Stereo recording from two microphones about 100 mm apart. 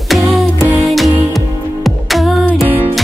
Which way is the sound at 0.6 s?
30° right (ahead or behind).